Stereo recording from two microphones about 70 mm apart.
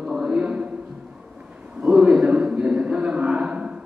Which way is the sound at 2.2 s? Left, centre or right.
Centre.